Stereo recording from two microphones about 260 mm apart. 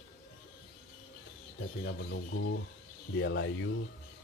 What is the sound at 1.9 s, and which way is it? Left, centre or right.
Speech, left.